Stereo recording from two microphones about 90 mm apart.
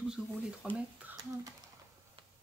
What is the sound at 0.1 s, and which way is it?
Speech, 10° right (ahead or behind).